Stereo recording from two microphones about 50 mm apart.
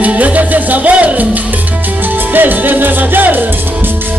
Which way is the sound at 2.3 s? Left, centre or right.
Right.